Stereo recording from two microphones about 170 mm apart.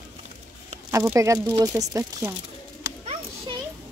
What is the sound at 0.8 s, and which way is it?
Speech, 15° right (ahead or behind).